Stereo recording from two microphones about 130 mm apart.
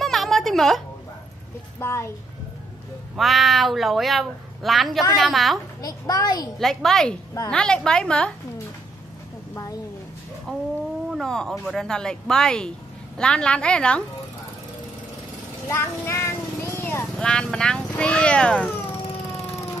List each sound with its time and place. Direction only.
0.0 s a sound: centre (ahead or behind)
1.8 s a child's voice: 20° left (ahead or behind)
3.2 s speech: centre (ahead or behind)
5.8 s a child's voice: 30° left (ahead or behind)
6.6 s a woman's voice: centre (ahead or behind)
10.5 s a woman's voice: 10° left (ahead or behind)
15.7 s speech: 20° left (ahead or behind)